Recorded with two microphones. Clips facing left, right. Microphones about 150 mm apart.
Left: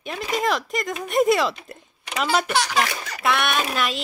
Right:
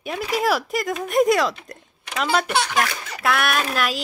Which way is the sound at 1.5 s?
10° left (ahead or behind).